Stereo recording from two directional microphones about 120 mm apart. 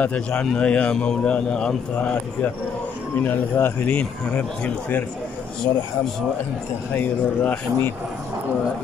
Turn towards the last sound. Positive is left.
turn(degrees=15)  # may be behind; listen again after turning